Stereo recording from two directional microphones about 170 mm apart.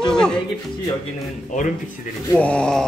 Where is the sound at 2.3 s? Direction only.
5° left (ahead or behind).